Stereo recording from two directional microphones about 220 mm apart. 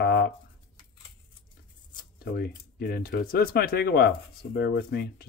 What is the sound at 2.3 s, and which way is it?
Speech, 45° left (ahead or behind).